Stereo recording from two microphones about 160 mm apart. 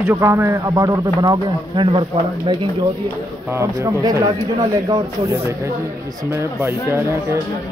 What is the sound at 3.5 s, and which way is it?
A man's voice, 20° right (ahead or behind).